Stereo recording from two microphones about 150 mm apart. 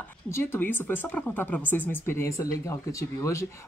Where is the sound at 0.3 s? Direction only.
15° left (ahead or behind).